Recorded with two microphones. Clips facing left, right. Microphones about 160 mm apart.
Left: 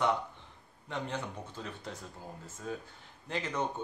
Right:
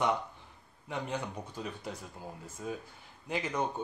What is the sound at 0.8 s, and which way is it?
Speech, 10° right (ahead or behind).